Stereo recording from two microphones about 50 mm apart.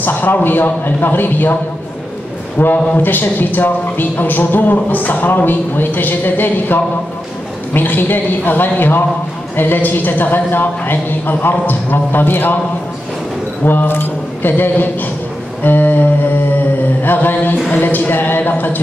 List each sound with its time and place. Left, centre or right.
0.0 s a man's voice: left
2.6 s a man's voice: left
13.7 s a man's voice: left
17.0 s a man's voice: left